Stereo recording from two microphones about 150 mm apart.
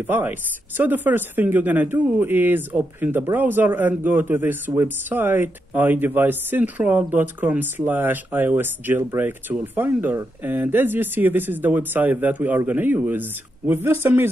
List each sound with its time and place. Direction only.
0.0 s speech: 10° right (ahead or behind)